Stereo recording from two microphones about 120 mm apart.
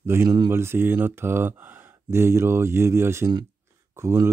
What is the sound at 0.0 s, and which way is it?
Speech, 20° right (ahead or behind).